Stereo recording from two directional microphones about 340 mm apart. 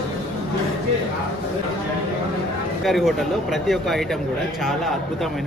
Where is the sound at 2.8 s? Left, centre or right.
Centre.